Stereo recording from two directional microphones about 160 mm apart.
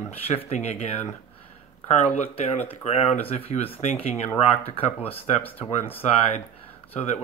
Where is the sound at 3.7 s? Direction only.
40° left (ahead or behind).